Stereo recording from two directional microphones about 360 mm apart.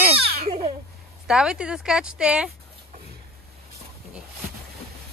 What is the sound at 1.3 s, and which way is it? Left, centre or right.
A woman's voice, centre.